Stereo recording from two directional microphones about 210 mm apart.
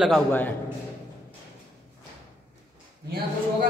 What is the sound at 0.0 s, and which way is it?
Speech, 5° left (ahead or behind).